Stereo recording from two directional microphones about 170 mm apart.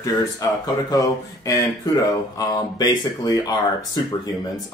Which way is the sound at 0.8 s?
20° left (ahead or behind).